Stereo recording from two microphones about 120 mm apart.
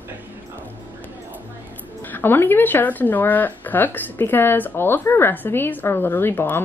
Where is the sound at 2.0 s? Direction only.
15° left (ahead or behind).